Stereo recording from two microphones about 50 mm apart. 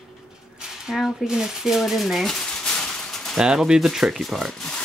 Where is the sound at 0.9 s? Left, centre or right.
Centre.